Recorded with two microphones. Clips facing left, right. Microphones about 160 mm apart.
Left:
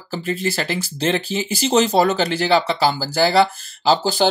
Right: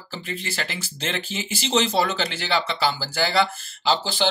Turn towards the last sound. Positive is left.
turn(degrees=40)  # may be behind; listen again after turning